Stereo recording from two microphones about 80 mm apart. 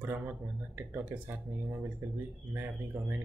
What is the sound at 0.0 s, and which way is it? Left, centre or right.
Speech, right.